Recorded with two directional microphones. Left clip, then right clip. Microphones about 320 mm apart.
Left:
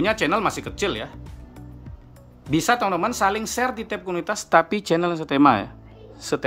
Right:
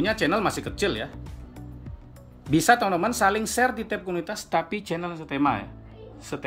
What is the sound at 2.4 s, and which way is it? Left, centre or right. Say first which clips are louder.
Speech: right 1 dB; centre.